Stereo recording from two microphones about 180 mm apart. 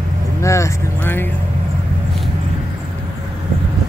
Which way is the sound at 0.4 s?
15° left (ahead or behind).